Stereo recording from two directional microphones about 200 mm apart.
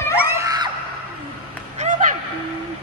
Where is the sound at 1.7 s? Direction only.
40° right (ahead or behind).